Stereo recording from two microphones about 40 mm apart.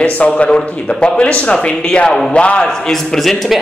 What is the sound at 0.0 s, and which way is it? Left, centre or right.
Speech, left.